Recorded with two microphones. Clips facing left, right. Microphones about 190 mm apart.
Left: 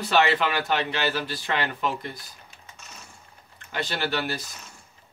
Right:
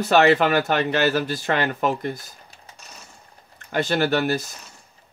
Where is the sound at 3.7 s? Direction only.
50° right (ahead or behind).